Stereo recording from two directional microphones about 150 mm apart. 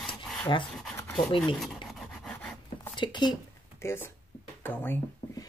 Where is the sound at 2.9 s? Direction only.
30° left (ahead or behind).